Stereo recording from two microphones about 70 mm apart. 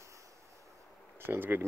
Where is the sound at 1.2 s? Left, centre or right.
Right.